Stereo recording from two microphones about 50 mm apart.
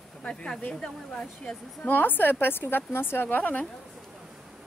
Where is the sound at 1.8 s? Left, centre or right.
Left.